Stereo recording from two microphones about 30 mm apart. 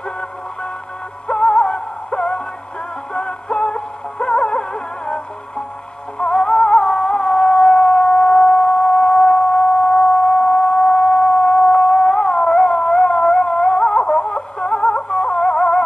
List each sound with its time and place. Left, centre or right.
1.2 s music: left